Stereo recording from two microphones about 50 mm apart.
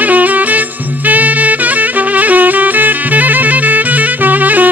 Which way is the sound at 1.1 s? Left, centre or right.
Right.